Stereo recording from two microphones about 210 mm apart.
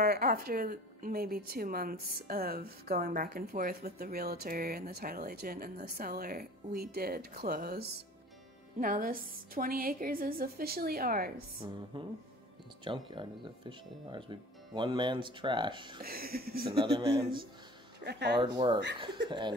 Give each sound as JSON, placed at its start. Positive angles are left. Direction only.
{"t": 0.0, "sound": "a woman's voice", "side_deg": -45}
{"t": 11.6, "sound": "speech", "side_deg": -20}
{"t": 12.8, "sound": "speech", "side_deg": -25}
{"t": 16.0, "sound": "a woman's voice", "side_deg": -45}
{"t": 16.6, "sound": "speech", "side_deg": -25}
{"t": 17.2, "sound": "a woman's voice", "side_deg": -45}
{"t": 18.4, "sound": "speech", "side_deg": -20}